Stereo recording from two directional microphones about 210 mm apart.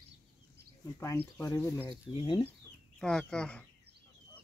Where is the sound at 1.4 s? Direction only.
10° left (ahead or behind).